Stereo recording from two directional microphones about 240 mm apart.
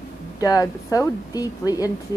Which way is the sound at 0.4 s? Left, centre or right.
Centre.